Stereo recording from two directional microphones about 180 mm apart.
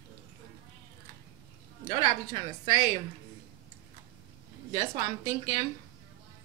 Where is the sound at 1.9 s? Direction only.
25° right (ahead or behind).